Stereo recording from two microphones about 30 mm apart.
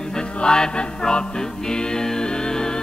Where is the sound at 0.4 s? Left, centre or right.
Left.